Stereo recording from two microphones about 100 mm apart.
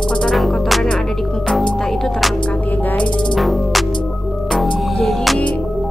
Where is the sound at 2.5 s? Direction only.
15° left (ahead or behind).